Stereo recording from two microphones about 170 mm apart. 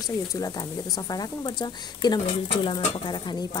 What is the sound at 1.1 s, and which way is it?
Speech, 25° left (ahead or behind).